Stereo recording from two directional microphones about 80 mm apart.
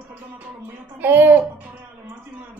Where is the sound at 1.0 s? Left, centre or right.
Right.